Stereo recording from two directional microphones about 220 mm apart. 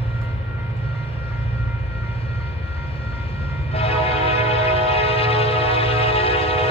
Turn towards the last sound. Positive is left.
turn(degrees=25)  # may be behind; listen again after turning